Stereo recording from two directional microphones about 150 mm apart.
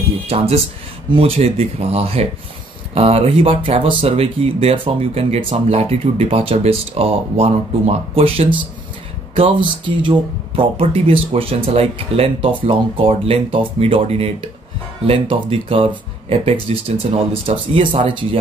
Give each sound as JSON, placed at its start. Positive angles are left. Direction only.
{"t": 1.1, "sound": "speech", "side_deg": -40}